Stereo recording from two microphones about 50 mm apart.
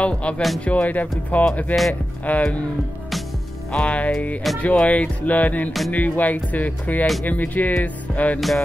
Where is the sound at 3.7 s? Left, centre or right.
Left.